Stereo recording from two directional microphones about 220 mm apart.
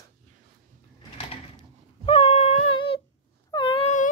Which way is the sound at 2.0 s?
25° left (ahead or behind).